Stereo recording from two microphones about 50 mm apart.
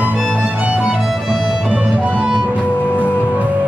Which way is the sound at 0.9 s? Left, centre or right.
Centre.